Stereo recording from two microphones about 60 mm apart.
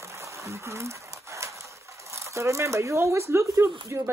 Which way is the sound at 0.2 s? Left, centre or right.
Right.